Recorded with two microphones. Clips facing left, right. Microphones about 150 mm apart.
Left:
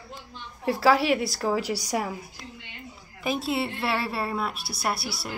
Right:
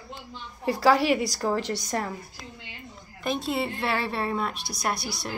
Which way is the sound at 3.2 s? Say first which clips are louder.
Left 1 dB; 5° left (ahead or behind).